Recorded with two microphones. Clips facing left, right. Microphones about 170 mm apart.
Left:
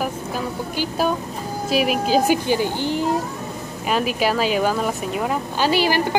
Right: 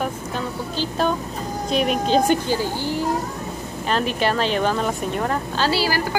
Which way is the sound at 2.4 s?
15° left (ahead or behind).